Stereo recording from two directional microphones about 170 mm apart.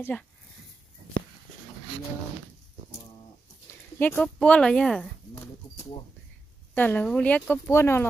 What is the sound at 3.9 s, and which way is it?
Speech, 10° left (ahead or behind).